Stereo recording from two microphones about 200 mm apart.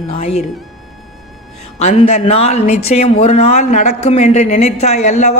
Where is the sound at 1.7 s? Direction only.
30° left (ahead or behind).